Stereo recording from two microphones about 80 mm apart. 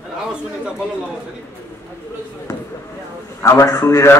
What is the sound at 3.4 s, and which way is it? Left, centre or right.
Speech, left.